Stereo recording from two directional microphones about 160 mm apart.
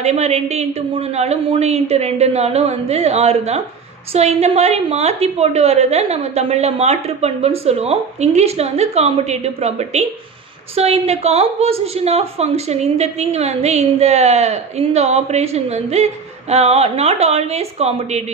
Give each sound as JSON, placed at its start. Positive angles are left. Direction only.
{"t": 0.0, "sound": "a woman's voice", "side_deg": -45}